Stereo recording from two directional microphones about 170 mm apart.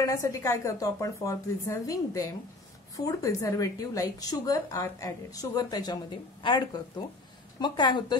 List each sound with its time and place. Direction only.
0.0 s a woman's voice: 20° left (ahead or behind)